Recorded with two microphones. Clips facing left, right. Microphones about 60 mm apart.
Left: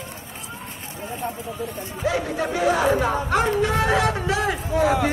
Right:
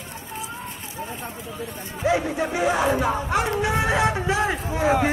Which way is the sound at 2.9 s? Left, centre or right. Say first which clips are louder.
Left 1 dB; centre.